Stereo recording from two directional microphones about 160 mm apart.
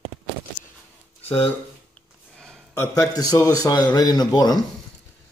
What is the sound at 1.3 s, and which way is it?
Speech, 40° left (ahead or behind).